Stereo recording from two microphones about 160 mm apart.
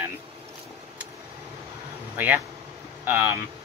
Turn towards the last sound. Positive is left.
turn(degrees=-10)  # may be behind; listen again after turning